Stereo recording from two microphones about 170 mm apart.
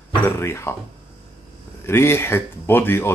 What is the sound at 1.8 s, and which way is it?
Speech, 15° left (ahead or behind).